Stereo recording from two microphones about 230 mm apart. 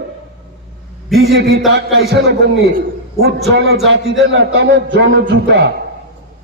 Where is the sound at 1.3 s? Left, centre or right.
Right.